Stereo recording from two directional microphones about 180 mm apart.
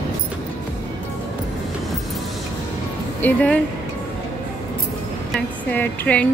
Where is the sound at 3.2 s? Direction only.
5° left (ahead or behind).